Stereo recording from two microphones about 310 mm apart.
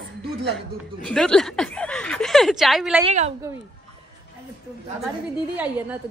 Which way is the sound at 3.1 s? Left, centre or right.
Right.